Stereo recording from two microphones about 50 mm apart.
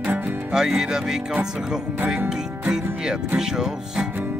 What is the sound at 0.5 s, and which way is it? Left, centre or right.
Speech, centre.